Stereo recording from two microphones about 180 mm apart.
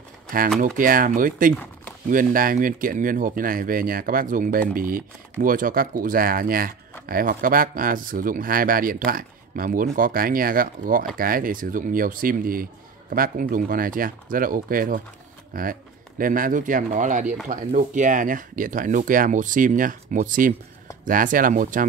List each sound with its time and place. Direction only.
0.6 s speech: 50° right (ahead or behind)